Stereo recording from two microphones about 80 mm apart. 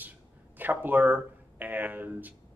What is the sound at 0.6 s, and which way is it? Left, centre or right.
A man's voice, right.